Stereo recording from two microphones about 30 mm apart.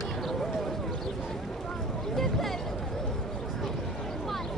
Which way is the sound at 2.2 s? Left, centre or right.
Centre.